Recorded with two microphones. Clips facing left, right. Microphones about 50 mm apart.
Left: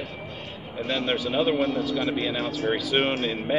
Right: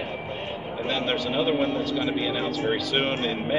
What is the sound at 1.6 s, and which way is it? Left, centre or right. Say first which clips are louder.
Speech: even; right.